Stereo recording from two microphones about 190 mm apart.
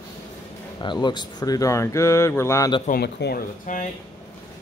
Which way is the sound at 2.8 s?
55° left (ahead or behind).